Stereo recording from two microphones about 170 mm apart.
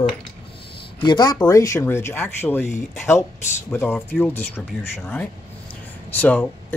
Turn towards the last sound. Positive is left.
turn(degrees=10)  # may be behind; listen again after turning